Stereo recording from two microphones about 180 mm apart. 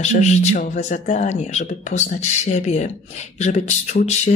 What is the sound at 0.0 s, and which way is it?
Speech, 40° left (ahead or behind).